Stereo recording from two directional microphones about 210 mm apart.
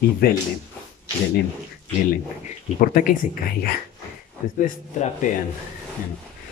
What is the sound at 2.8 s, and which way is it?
Speech, 40° left (ahead or behind).